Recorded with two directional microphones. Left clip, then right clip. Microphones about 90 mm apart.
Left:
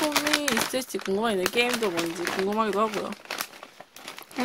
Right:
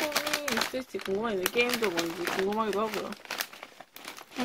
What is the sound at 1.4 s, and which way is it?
Speech, 30° left (ahead or behind).